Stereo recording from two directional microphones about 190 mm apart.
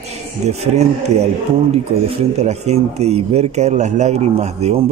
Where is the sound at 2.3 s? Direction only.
35° right (ahead or behind).